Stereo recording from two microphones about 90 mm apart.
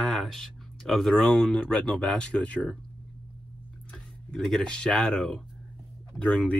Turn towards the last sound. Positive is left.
turn(degrees=15)  # may be behind; listen again after turning